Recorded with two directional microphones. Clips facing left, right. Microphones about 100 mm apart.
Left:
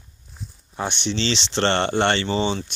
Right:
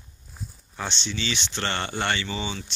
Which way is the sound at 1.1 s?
75° left (ahead or behind).